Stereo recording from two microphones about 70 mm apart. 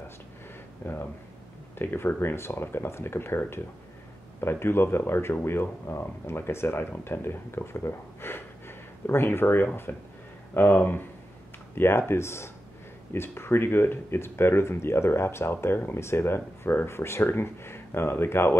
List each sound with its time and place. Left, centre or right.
0.8 s speech: left